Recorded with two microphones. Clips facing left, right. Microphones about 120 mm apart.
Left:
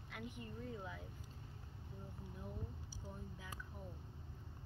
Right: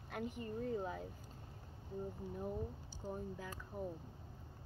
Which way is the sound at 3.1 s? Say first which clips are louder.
Right 9 dB; 45° right (ahead or behind).